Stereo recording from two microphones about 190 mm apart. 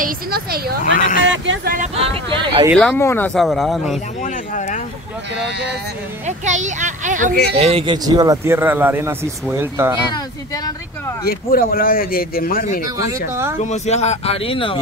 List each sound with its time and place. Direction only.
0.0 s a woman's voice: 50° right (ahead or behind)
1.2 s speech: 75° right (ahead or behind)
2.0 s speech: 30° right (ahead or behind)
2.8 s speech: 10° left (ahead or behind)
3.3 s speech: centre (ahead or behind)
4.2 s speech: 40° left (ahead or behind)
6.2 s a child's voice: 40° right (ahead or behind)
7.5 s speech: 30° right (ahead or behind); by 9.9 s 15° right (ahead or behind)
10.1 s speech: 20° left (ahead or behind)
11.2 s speech: 50° left (ahead or behind)
13.3 s speech: 15° right (ahead or behind)
13.6 s speech: 35° left (ahead or behind)